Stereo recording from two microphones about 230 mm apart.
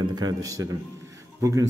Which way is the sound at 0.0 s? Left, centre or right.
Centre.